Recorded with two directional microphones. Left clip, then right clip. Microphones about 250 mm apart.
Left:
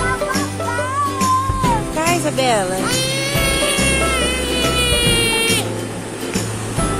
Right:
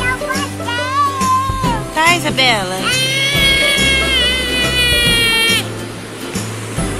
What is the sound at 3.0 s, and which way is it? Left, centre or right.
Music, centre.